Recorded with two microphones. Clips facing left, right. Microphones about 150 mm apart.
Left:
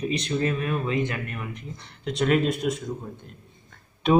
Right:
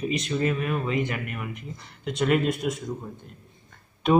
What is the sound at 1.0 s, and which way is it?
Speech, 15° right (ahead or behind).